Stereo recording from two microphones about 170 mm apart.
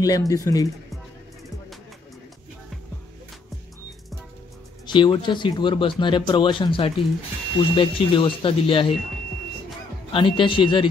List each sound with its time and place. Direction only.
0.0 s speech: 20° left (ahead or behind)
4.8 s speech: 25° left (ahead or behind)
10.1 s speech: 30° left (ahead or behind)